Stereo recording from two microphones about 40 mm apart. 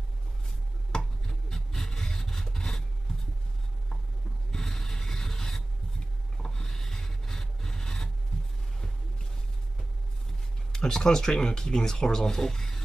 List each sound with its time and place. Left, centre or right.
0.9 s rub: centre
4.5 s rub: centre
6.3 s filing: centre
10.7 s speech: centre